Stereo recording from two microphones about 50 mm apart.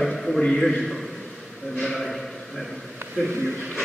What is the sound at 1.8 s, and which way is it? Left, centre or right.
Speech, centre.